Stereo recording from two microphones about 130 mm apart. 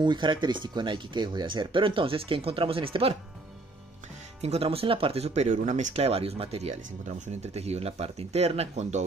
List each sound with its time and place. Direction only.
0.0 s speech: 35° right (ahead or behind)
4.4 s speech: 50° right (ahead or behind)